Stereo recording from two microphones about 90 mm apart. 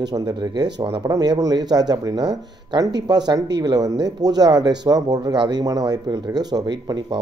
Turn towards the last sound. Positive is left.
turn(degrees=-50)  # may be behind; listen again after turning